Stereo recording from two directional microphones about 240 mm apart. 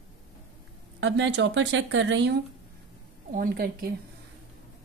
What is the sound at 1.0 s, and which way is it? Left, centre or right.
Speech, right.